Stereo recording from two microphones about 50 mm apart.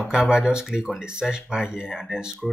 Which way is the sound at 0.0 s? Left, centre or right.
Centre.